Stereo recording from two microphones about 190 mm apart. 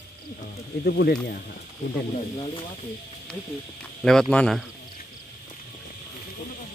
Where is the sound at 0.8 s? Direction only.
55° left (ahead or behind).